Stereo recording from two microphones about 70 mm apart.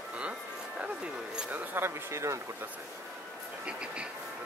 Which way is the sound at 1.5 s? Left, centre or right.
Right.